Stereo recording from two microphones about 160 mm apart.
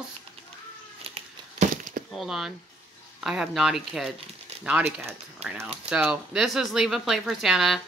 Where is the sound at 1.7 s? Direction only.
55° right (ahead or behind).